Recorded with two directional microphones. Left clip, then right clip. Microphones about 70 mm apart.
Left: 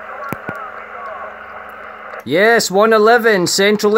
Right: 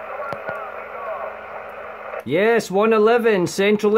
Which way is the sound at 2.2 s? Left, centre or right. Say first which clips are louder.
Left 6 dB; left.